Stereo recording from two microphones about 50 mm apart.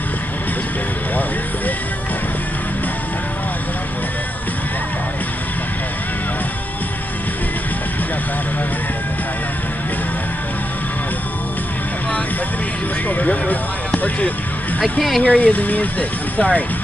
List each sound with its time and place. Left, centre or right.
13.1 s music: left
14.8 s speech: centre
15.2 s speech: left